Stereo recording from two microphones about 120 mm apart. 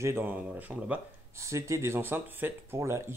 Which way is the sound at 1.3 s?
25° right (ahead or behind).